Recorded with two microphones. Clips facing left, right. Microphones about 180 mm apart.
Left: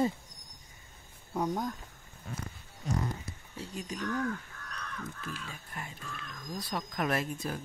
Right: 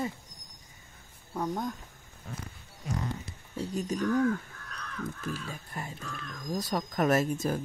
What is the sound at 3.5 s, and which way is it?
Speech, 40° right (ahead or behind).